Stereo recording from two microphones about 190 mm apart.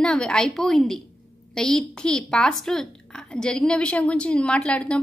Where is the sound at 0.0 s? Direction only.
5° left (ahead or behind).